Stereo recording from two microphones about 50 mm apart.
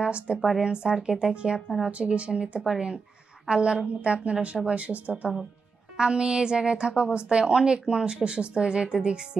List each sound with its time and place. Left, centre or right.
0.0 s a woman's voice: right
5.9 s a woman's voice: centre